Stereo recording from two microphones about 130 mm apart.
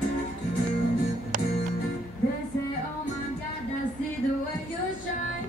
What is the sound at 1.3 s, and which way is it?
Music, 80° right.